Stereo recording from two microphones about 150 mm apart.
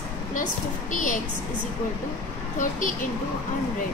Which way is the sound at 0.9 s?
60° left (ahead or behind).